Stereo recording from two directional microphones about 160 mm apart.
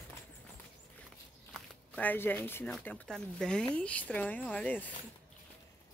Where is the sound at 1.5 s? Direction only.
10° left (ahead or behind).